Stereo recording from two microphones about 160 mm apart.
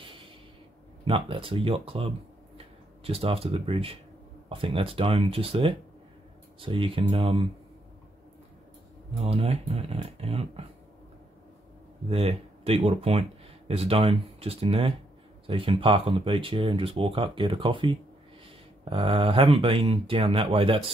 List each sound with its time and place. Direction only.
1.0 s speech: 35° right (ahead or behind)
9.2 s speech: 40° right (ahead or behind)
12.1 s speech: 35° right (ahead or behind)